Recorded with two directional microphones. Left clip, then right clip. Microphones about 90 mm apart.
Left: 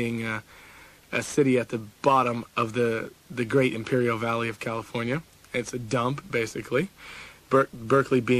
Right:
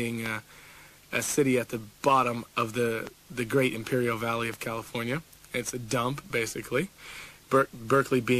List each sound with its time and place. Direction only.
0.0 s speech: 25° left (ahead or behind)